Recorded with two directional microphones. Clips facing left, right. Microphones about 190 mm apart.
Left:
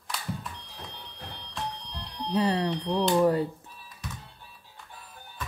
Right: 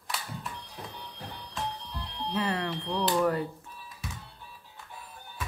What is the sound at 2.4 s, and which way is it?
Speech, 30° left (ahead or behind).